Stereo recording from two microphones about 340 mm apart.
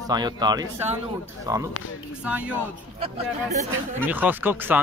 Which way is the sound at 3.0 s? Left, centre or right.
Centre.